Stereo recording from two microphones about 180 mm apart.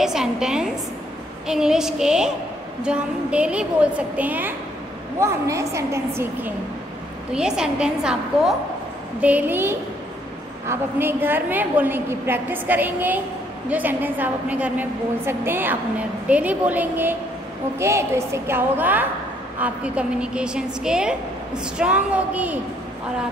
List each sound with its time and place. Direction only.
0.0 s a woman's voice: 5° right (ahead or behind)
7.3 s a woman's voice: 5° right (ahead or behind)